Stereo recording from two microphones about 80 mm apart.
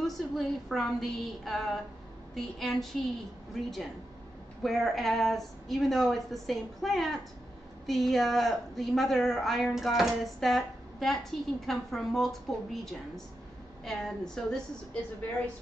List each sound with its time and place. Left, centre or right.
0.0 s a woman's voice: centre
4.6 s a woman's voice: centre